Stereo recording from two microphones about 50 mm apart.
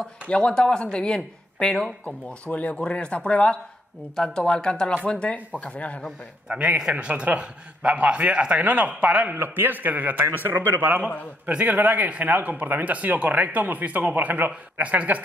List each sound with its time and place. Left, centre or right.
0.3 s speech: centre
6.9 s speech: right
9.3 s speech: right
10.2 s speech: right